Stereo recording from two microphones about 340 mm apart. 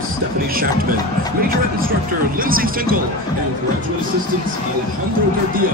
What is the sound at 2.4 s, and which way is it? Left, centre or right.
Speech, right.